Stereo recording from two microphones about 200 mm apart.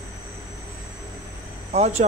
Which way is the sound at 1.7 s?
35° right (ahead or behind).